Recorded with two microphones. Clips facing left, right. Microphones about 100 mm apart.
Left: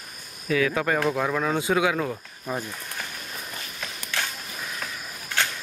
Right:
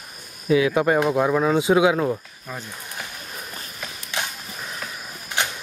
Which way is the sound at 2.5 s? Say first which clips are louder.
Left 5 dB; 15° left (ahead or behind).